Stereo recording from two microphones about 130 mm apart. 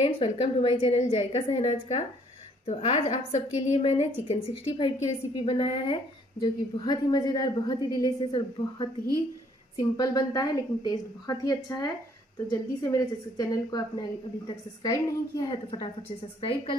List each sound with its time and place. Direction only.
0.0 s a woman's voice: 45° left (ahead or behind)
6.4 s a woman's voice: 30° left (ahead or behind)
16.3 s a woman's voice: 40° left (ahead or behind)